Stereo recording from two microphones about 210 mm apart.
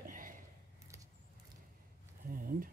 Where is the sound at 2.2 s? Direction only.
40° right (ahead or behind).